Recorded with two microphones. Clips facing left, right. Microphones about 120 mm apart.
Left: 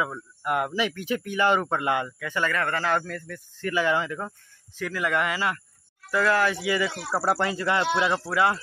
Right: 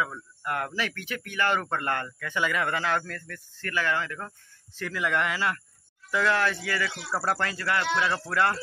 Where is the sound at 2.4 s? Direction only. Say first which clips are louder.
Left 1 dB; 5° right (ahead or behind).